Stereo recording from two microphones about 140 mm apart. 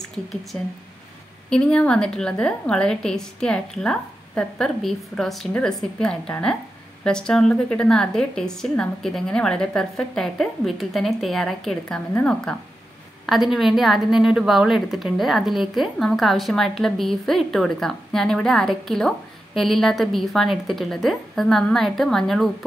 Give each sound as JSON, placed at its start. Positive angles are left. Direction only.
{"t": 0.5, "sound": "a woman's voice", "side_deg": 10}